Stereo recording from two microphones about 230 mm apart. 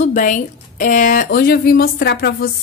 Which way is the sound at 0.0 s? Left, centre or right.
Left.